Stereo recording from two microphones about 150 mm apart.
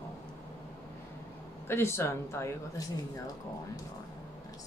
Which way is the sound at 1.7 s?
15° left (ahead or behind).